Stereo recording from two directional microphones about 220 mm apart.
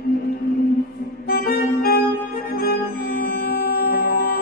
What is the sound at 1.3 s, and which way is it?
Music, 45° left (ahead or behind).